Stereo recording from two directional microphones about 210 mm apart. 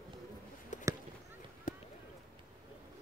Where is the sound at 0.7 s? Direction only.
35° left (ahead or behind).